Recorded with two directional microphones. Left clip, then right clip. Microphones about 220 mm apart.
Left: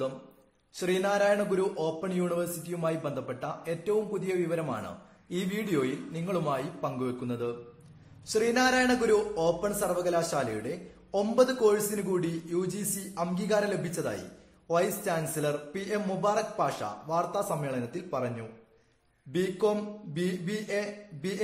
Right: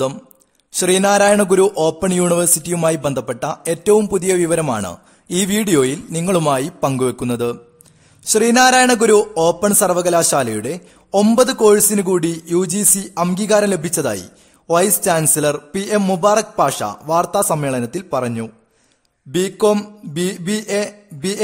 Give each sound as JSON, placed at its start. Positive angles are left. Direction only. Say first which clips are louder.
{"t": 0.7, "sound": "a man's voice", "louder": "right 14 dB", "side_deg": -50}